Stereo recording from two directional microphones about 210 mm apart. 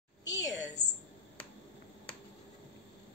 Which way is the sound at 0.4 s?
15° left (ahead or behind).